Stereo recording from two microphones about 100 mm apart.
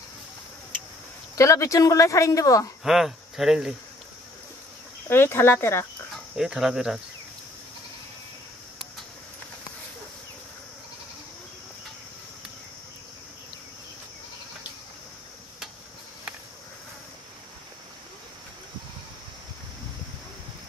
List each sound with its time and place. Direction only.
1.3 s speech: 30° left (ahead or behind)
2.8 s speech: 5° right (ahead or behind)
5.1 s speech: 25° left (ahead or behind)
6.3 s speech: 5° right (ahead or behind)